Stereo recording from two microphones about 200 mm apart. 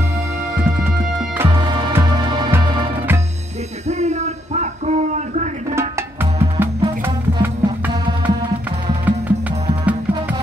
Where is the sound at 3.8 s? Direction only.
35° right (ahead or behind).